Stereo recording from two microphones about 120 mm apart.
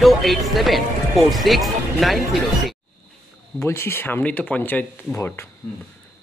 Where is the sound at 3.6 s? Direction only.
20° left (ahead or behind).